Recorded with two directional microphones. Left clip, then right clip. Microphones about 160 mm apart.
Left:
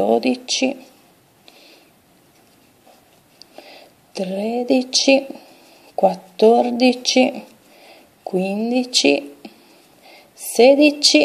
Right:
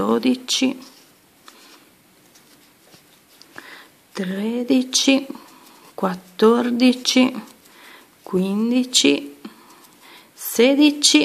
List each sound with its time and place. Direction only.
0.0 s speech: 15° right (ahead or behind)
4.1 s speech: 10° right (ahead or behind)
8.6 s speech: 15° right (ahead or behind)
10.5 s speech: 15° right (ahead or behind)